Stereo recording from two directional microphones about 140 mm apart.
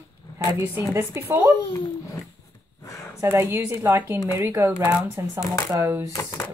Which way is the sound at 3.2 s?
20° right (ahead or behind).